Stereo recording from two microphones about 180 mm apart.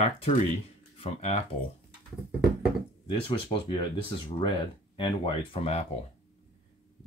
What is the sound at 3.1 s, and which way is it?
Speech, 30° left (ahead or behind).